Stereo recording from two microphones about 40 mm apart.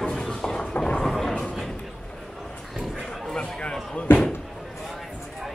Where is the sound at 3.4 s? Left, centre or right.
Left.